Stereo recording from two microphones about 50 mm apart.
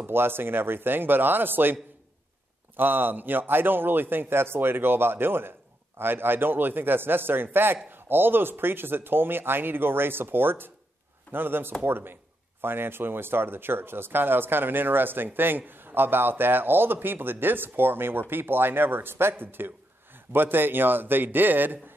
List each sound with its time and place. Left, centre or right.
0.0 s speech: right